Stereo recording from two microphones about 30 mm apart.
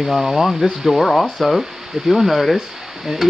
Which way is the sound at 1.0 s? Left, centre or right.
Centre.